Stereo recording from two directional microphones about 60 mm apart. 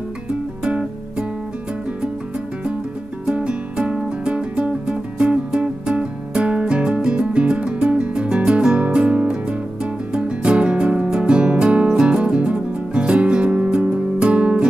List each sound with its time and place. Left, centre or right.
0.3 s music: centre
3.3 s music: centre